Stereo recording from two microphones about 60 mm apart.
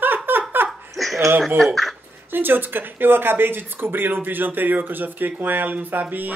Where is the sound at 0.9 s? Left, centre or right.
Centre.